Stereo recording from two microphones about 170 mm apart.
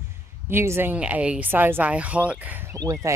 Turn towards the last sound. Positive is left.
turn(degrees=-20)  # may be behind; listen again after turning